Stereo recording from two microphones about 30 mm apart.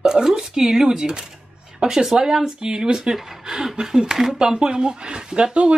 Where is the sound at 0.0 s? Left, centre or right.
Right.